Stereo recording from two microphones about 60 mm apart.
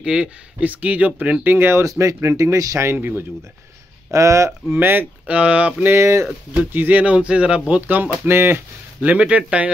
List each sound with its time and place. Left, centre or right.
0.0 s speech: centre
0.7 s speech: right
1.5 s speech: right
1.8 s speech: right
3.0 s speech: right
4.1 s speech: right
4.5 s speech: right
5.2 s speech: right
5.9 s speech: right
6.7 s speech: right
7.2 s speech: centre
7.8 s speech: right
9.0 s speech: right